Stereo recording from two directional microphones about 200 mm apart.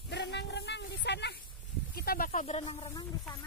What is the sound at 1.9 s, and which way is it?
Speech, 45° left (ahead or behind).